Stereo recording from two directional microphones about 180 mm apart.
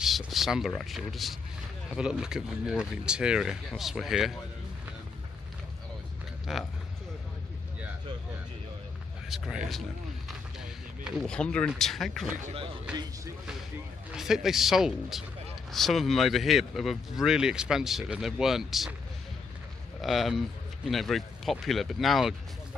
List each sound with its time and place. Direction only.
0.0 s speech: centre (ahead or behind)
6.5 s speech: centre (ahead or behind)
9.3 s speech: centre (ahead or behind)
11.1 s speech: 5° left (ahead or behind)
12.4 s speech: 30° right (ahead or behind)
14.1 s speech: 5° right (ahead or behind)
20.0 s speech: centre (ahead or behind)